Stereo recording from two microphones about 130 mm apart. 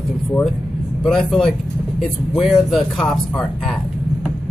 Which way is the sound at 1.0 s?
5° left (ahead or behind).